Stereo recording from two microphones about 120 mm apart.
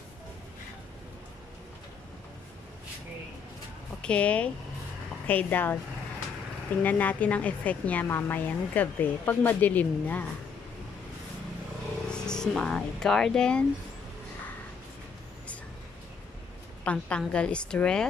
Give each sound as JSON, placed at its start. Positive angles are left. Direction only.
{"t": 4.0, "sound": "a woman's voice", "side_deg": 10}
{"t": 6.8, "sound": "a woman's voice", "side_deg": 15}
{"t": 12.1, "sound": "speech", "side_deg": 5}
{"t": 16.8, "sound": "a woman's voice", "side_deg": 10}